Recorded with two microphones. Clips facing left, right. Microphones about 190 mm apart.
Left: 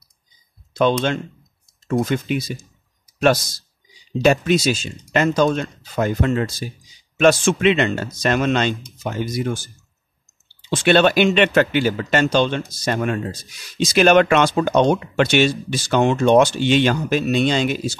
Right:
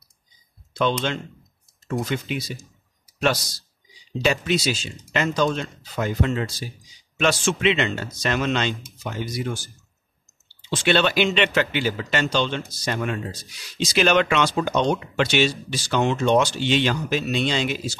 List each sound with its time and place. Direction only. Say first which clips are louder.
0.7 s speech: left 5 dB; 50° left (ahead or behind)
4.2 s speech: left 6 dB; 50° left (ahead or behind)
10.7 s speech: left 6 dB; 50° left (ahead or behind)